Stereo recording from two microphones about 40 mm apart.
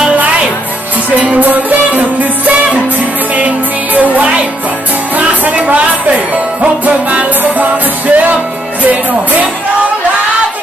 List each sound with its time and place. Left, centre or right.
1.4 s music: right